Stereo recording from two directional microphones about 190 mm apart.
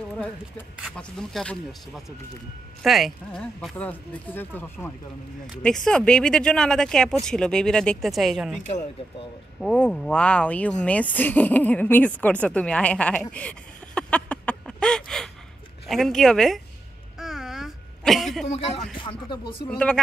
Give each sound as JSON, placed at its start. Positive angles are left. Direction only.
{"t": 0.7, "sound": "speech", "side_deg": 0}
{"t": 2.8, "sound": "speech", "side_deg": 0}
{"t": 9.6, "sound": "speech", "side_deg": 5}
{"t": 17.2, "sound": "a sound", "side_deg": 0}
{"t": 18.5, "sound": "speech", "side_deg": 30}
{"t": 19.7, "sound": "speech", "side_deg": 5}